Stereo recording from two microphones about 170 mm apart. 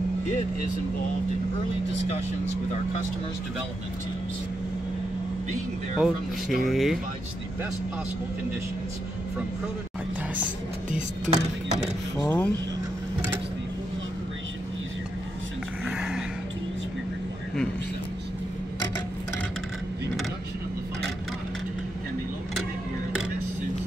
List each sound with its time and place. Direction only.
5.9 s speech: 5° right (ahead or behind)
10.9 s speech: 45° right (ahead or behind)
12.2 s speech: 10° left (ahead or behind)
15.8 s a sound: 5° right (ahead or behind)